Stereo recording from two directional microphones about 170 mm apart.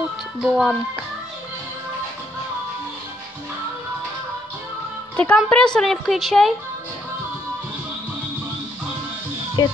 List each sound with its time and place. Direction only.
0.4 s a woman's voice: centre (ahead or behind)
5.1 s a woman's voice: 5° left (ahead or behind)
9.6 s music: 25° left (ahead or behind)